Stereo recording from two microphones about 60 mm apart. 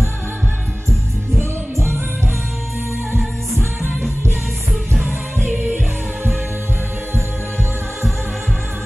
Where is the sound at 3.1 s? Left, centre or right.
Centre.